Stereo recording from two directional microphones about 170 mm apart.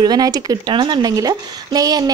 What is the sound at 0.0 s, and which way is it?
Speech, 25° right (ahead or behind).